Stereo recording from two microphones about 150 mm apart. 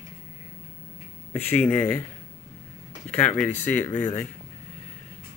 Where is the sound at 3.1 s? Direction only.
10° left (ahead or behind).